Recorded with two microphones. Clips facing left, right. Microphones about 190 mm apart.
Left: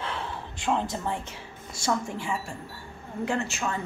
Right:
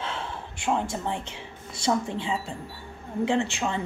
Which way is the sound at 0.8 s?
20° right (ahead or behind).